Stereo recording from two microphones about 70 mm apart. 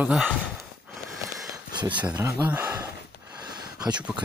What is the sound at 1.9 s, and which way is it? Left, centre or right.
Speech, centre.